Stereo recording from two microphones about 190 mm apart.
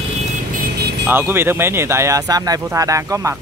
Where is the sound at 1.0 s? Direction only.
10° right (ahead or behind).